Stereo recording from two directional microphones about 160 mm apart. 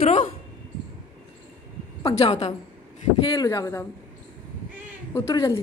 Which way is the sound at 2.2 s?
40° left (ahead or behind).